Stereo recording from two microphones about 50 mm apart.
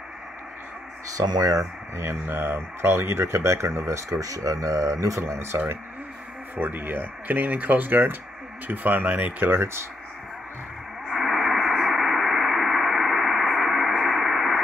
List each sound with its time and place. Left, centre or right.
1.6 s speech: right
6.5 s speech: right
9.5 s speech: right
11.1 s radio: centre